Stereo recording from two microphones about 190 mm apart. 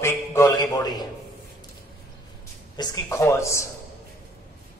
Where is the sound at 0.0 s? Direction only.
15° left (ahead or behind).